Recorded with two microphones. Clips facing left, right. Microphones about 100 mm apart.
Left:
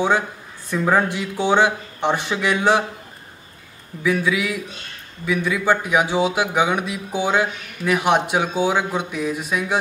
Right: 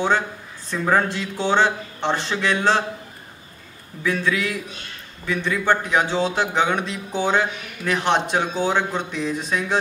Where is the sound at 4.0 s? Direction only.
10° left (ahead or behind).